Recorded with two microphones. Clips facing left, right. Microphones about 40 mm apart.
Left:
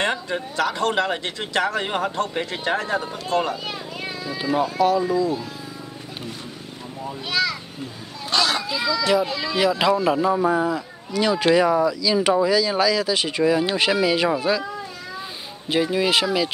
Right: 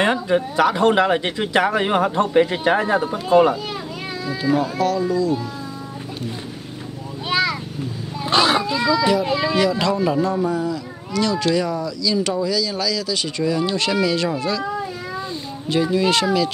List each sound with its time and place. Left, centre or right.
0.0 s speech: centre
4.6 s speech: centre
7.2 s a sound: right
8.3 s speech: right
9.6 s speech: centre
10.4 s speech: left
15.7 s speech: centre